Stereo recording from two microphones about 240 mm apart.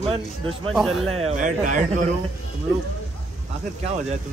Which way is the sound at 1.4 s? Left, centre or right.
Right.